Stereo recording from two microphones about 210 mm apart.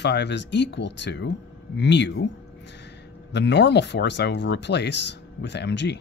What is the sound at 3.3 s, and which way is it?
Speech, 55° left (ahead or behind).